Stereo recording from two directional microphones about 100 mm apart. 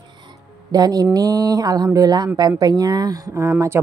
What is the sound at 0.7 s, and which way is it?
A woman's voice, 40° right (ahead or behind).